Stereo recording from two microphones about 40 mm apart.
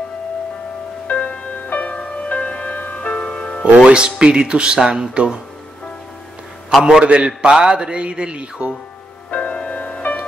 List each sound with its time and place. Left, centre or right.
1.0 s music: left
3.3 s music: centre
3.7 s a man's voice: right
4.7 s speech: centre
5.1 s a man's voice: right
6.8 s a man's voice: right
9.3 s music: left